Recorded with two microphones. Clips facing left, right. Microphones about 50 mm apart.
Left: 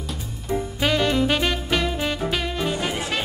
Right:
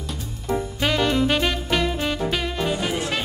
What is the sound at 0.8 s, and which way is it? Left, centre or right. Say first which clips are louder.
Music: even; centre.